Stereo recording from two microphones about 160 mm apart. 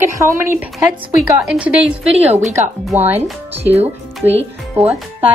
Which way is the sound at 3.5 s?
40° right (ahead or behind).